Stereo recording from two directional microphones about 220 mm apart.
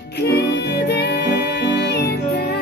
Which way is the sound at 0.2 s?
50° left (ahead or behind).